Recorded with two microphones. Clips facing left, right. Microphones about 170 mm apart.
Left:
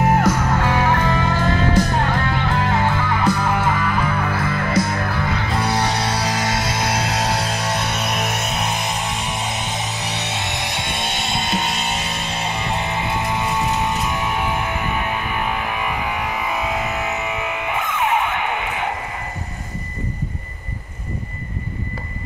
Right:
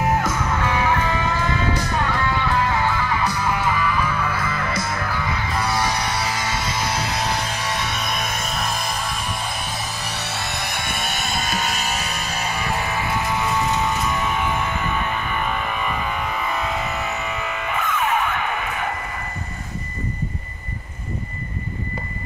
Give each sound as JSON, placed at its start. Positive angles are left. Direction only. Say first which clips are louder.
{"t": 0.4, "sound": "music", "louder": "left 3 dB", "side_deg": 35}
{"t": 2.0, "sound": "music", "louder": "left 1 dB", "side_deg": 50}
{"t": 9.4, "sound": "music", "louder": "left 3 dB", "side_deg": 20}
{"t": 9.7, "sound": "music", "louder": "left 3 dB", "side_deg": 80}
{"t": 9.9, "sound": "music", "louder": "left 3 dB", "side_deg": 20}